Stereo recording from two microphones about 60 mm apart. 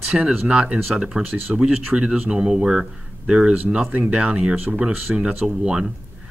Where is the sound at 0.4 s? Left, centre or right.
Centre.